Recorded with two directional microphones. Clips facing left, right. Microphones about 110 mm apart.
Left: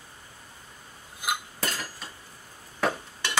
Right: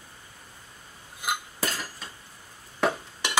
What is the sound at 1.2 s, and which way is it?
Cutlery, centre (ahead or behind).